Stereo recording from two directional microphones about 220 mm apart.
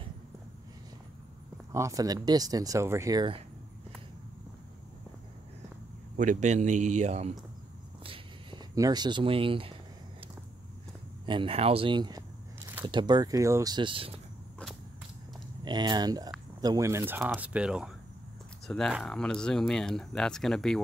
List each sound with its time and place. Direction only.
1.7 s speech: 15° right (ahead or behind)
6.1 s a man's voice: 35° right (ahead or behind)
8.0 s a sound: 25° right (ahead or behind)
11.2 s a sound: 25° right (ahead or behind)
12.8 s speech: 20° right (ahead or behind)
15.6 s speech: 20° right (ahead or behind); by 20.8 s 5° left (ahead or behind)